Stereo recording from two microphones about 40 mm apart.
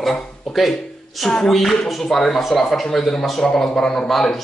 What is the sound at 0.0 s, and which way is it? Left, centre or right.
A man's voice, centre.